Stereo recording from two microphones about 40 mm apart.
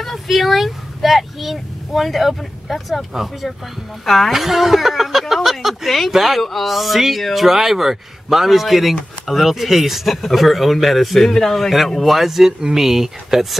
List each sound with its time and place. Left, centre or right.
0.0 s speech: centre
4.3 s speech: centre